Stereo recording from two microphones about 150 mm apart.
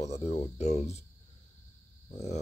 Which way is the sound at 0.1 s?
50° left (ahead or behind).